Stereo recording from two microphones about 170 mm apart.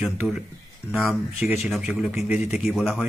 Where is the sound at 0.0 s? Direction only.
5° right (ahead or behind).